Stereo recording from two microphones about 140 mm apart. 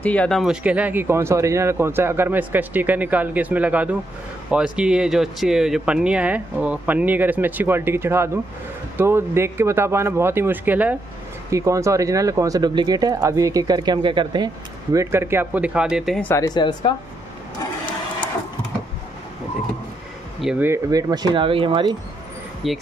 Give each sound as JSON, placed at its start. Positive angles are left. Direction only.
{"t": 0.0, "sound": "speech", "side_deg": 10}
{"t": 11.5, "sound": "speech", "side_deg": -20}
{"t": 16.3, "sound": "a woman's voice", "side_deg": 30}
{"t": 20.3, "sound": "speech", "side_deg": -5}
{"t": 20.6, "sound": "speech", "side_deg": -20}
{"t": 22.6, "sound": "speech", "side_deg": 0}